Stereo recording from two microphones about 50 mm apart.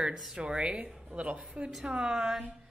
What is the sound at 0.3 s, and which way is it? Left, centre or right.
Speech, right.